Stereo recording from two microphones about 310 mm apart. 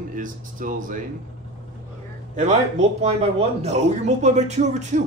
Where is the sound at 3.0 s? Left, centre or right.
Right.